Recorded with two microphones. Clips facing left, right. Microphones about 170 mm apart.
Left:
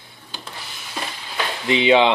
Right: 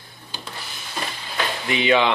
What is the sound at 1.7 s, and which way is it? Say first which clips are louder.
Speech: left 4 dB; 25° left (ahead or behind).